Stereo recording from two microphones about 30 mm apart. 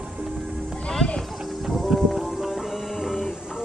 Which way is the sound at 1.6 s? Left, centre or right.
Centre.